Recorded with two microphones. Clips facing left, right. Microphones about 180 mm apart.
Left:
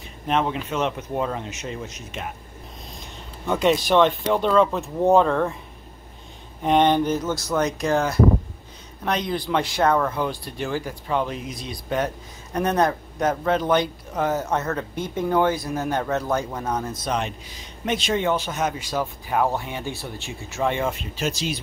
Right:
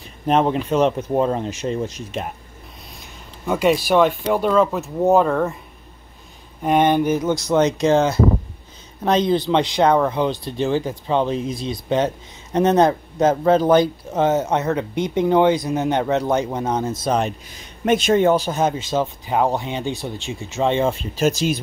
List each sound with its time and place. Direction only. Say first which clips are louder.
0.3 s speech: right 6 dB; 40° right (ahead or behind)
3.4 s speech: right 2 dB; 5° right (ahead or behind)
6.6 s speech: right 2 dB; 5° right (ahead or behind); by 17.2 s 25° right (ahead or behind)
17.2 s speech: right 6 dB; 50° right (ahead or behind)